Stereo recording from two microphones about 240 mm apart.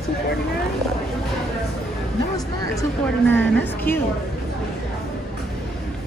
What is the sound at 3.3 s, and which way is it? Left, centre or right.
Speech, centre.